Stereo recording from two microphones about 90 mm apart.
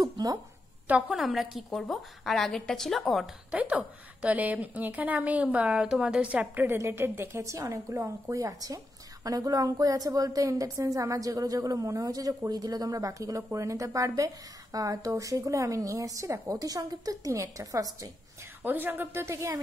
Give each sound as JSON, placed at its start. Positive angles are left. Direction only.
{"t": 0.0, "sound": "a sound", "side_deg": -45}
{"t": 1.0, "sound": "a woman's voice", "side_deg": 0}
{"t": 3.5, "sound": "a woman's voice", "side_deg": -15}
{"t": 18.6, "sound": "a woman's voice", "side_deg": -20}